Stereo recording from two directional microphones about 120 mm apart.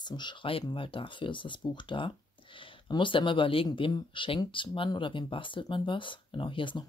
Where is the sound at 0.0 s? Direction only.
40° left (ahead or behind).